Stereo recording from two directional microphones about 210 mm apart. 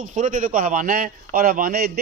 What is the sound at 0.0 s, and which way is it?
A man's voice, 40° right (ahead or behind).